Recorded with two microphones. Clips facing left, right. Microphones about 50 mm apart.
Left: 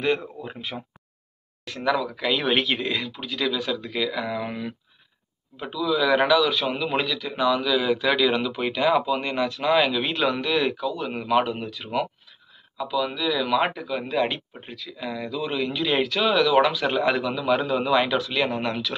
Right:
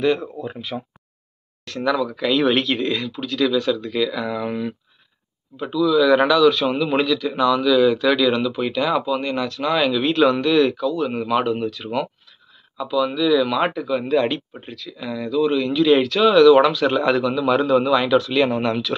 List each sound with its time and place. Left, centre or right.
0.7 s speech: right
1.6 s a man's voice: centre
5.6 s a man's voice: centre